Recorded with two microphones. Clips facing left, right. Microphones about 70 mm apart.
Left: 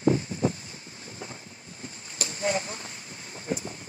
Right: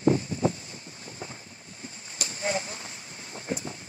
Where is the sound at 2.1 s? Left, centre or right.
Left.